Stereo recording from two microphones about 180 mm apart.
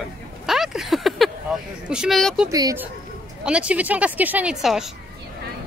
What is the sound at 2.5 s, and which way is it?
Speech, 20° right (ahead or behind).